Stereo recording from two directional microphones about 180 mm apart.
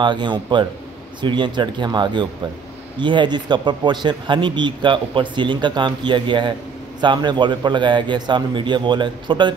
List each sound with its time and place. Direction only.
0.0 s speech: 25° right (ahead or behind)